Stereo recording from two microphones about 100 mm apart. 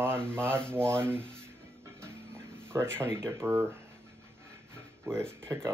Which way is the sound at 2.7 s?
25° right (ahead or behind).